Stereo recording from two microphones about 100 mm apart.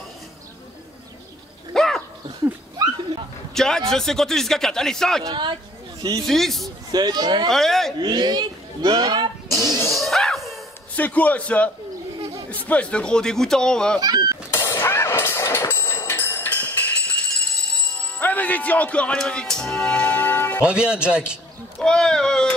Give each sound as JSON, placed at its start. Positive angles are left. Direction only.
{"t": 1.7, "sound": "a sound", "side_deg": 5}
{"t": 3.5, "sound": "speech", "side_deg": 5}
{"t": 5.3, "sound": "speech", "side_deg": -50}
{"t": 6.2, "sound": "speech", "side_deg": 0}
{"t": 6.9, "sound": "speech", "side_deg": -45}
{"t": 7.4, "sound": "speech", "side_deg": 5}
{"t": 8.0, "sound": "speech", "side_deg": -45}
{"t": 9.8, "sound": "music", "side_deg": 0}
{"t": 11.0, "sound": "speech", "side_deg": 15}
{"t": 13.9, "sound": "speech", "side_deg": -45}
{"t": 14.5, "sound": "vehicle", "side_deg": 25}
{"t": 20.6, "sound": "speech", "side_deg": -10}
{"t": 21.7, "sound": "a sound", "side_deg": 5}